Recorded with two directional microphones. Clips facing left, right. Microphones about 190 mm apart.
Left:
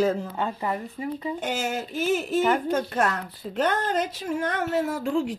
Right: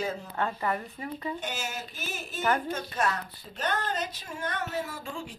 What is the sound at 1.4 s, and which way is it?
Speech, 90° left.